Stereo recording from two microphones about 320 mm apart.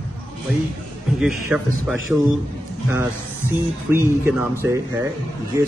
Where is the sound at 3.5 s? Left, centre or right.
Centre.